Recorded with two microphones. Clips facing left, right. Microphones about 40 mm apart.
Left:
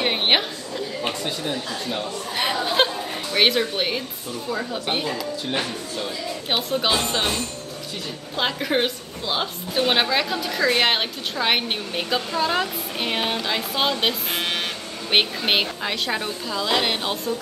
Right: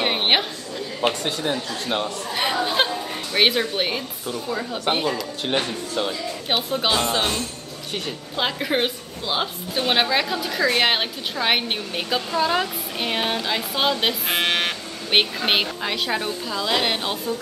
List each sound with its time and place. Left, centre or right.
0.0 s a sound: centre
1.0 s speech: right
2.6 s chatter: centre
3.3 s a woman's voice: centre
5.5 s speech: right
6.5 s a woman's voice: centre
8.4 s a woman's voice: centre
14.3 s speech: right
15.0 s a woman's voice: centre